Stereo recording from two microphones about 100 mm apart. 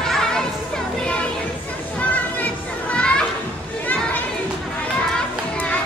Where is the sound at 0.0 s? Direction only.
5° left (ahead or behind).